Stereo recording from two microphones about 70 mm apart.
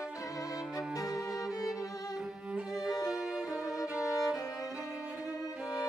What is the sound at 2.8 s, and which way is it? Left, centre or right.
Violin, left.